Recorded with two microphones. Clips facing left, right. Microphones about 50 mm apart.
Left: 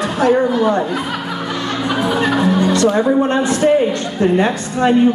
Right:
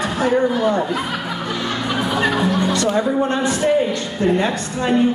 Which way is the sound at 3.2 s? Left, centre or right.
Centre.